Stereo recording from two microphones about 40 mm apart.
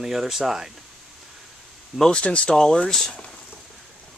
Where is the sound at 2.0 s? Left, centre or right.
Left.